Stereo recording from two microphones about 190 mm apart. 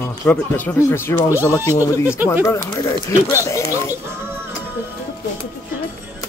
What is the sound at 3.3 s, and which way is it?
Speech, 15° left (ahead or behind).